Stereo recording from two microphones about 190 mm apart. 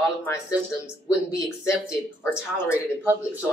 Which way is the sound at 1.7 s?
15° left (ahead or behind).